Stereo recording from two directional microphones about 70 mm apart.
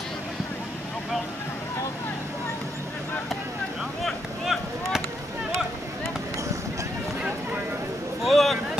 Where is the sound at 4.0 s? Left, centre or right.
Centre.